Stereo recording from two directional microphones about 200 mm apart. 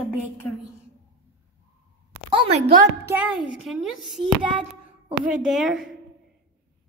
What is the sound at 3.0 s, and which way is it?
A child's voice, 10° right (ahead or behind).